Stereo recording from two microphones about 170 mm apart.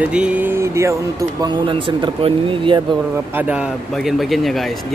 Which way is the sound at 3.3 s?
10° right (ahead or behind).